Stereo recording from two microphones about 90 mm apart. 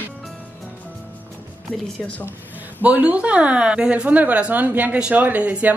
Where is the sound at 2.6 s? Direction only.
20° right (ahead or behind).